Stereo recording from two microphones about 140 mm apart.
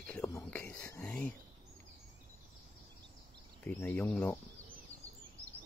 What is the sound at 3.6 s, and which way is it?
Speech, 10° left (ahead or behind).